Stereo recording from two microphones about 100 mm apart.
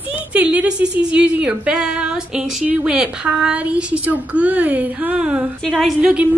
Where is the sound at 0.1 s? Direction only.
10° right (ahead or behind).